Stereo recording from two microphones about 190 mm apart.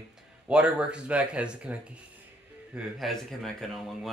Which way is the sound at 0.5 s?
5° right (ahead or behind).